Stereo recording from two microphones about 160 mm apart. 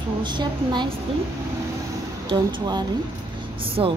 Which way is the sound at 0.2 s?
30° right (ahead or behind).